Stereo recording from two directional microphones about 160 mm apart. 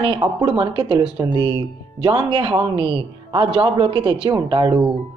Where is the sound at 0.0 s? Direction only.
30° right (ahead or behind).